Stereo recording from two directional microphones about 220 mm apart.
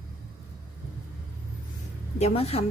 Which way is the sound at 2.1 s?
30° left (ahead or behind).